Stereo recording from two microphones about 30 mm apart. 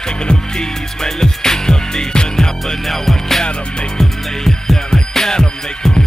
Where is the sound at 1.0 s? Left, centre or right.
Centre.